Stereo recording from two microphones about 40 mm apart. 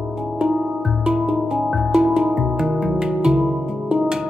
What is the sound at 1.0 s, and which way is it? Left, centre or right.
Music, right.